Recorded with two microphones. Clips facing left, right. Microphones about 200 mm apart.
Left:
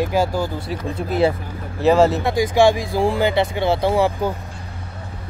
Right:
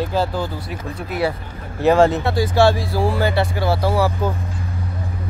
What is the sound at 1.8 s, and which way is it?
Speech, centre (ahead or behind).